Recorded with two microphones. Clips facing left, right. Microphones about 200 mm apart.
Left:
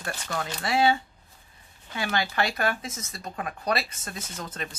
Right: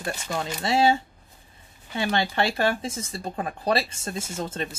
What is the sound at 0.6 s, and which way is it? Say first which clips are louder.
Speech: right 2 dB; 25° right (ahead or behind).